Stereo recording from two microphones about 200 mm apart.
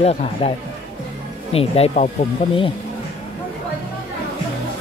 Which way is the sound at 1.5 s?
30° left (ahead or behind).